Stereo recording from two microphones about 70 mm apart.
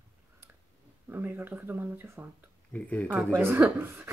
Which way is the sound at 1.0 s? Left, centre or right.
Right.